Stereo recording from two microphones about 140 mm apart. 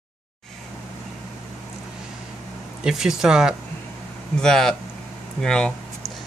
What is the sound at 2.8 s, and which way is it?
Speech, 5° right (ahead or behind).